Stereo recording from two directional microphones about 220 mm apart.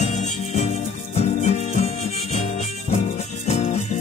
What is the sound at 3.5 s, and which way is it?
Music, 30° left (ahead or behind).